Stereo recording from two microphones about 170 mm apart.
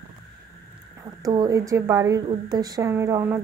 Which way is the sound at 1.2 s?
20° right (ahead or behind).